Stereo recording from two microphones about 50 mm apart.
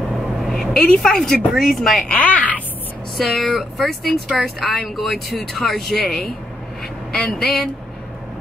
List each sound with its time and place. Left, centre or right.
0.4 s vehicle: centre
0.7 s a woman's voice: centre
1.5 s speech: centre
2.0 s a woman's voice: left
3.2 s speech: centre
7.1 s speech: centre